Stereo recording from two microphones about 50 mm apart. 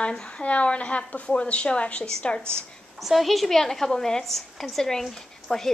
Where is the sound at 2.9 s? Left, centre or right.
Centre.